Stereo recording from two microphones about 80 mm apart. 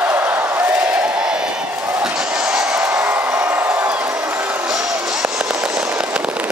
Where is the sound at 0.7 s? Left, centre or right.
Centre.